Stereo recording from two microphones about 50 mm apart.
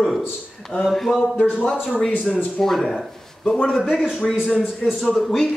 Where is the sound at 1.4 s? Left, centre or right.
Left.